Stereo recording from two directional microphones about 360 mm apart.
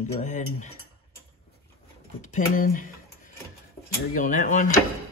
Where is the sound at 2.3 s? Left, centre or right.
Left.